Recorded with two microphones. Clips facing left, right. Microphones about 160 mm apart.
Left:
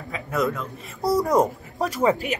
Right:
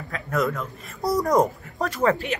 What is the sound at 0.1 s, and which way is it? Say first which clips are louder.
A man's voice: even; centre (ahead or behind).